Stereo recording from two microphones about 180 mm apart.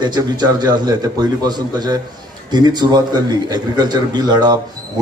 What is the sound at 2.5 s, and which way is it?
A man's voice, 25° right (ahead or behind).